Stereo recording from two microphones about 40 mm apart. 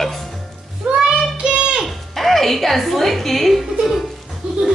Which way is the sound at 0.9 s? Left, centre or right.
Right.